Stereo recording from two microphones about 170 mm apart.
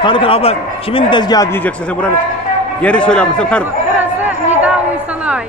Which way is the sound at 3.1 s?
5° left (ahead or behind).